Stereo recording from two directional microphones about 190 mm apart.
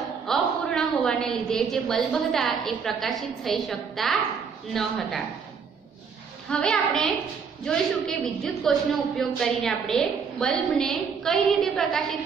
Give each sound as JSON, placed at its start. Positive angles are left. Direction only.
{"t": 0.3, "sound": "a woman's voice", "side_deg": 0}
{"t": 6.5, "sound": "a woman's voice", "side_deg": 0}